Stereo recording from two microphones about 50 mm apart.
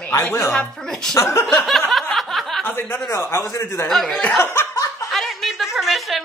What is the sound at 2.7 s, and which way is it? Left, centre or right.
Speech, left.